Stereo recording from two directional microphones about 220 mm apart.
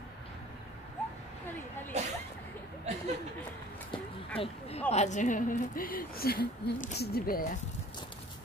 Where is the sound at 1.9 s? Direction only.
30° right (ahead or behind).